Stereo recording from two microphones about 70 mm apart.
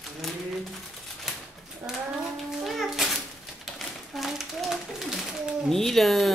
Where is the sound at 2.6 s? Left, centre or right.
Centre.